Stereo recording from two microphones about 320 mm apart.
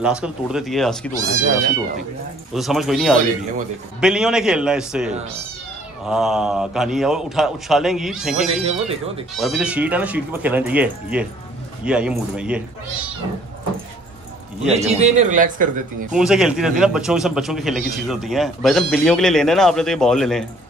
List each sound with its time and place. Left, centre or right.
0.0 s speech: centre
2.5 s speech: centre
8.6 s speech: centre
9.3 s speech: centre
14.7 s speech: centre
16.2 s speech: centre